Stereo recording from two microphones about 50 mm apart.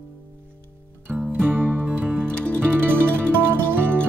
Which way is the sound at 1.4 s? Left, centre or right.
Right.